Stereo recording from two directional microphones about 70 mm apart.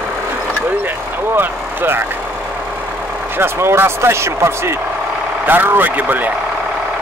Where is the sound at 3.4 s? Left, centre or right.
Right.